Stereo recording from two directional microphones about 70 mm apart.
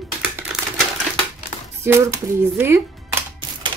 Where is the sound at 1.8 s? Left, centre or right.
Right.